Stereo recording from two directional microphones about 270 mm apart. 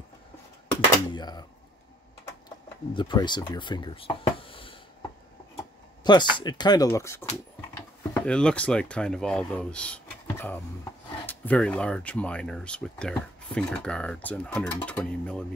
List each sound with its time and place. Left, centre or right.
1.1 s a sound: centre
2.9 s speech: centre
6.0 s speech: centre